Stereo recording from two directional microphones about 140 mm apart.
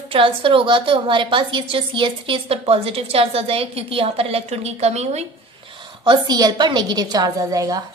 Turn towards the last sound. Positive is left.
turn(degrees=-25)  # may be behind; listen again after turning